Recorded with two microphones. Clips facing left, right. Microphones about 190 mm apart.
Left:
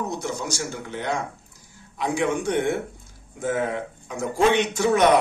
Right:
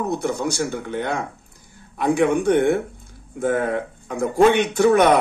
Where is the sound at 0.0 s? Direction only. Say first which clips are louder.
Right 6 dB; 60° right (ahead or behind).